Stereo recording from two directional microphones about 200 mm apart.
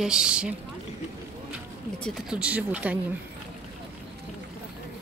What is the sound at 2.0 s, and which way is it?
Speech, 5° right (ahead or behind).